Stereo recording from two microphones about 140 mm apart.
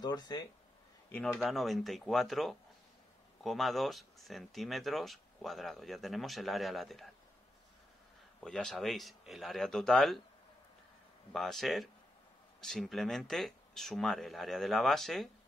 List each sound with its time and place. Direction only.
0.0 s speech: 30° left (ahead or behind)
1.1 s speech: centre (ahead or behind)
8.4 s speech: 5° left (ahead or behind)
11.3 s speech: centre (ahead or behind)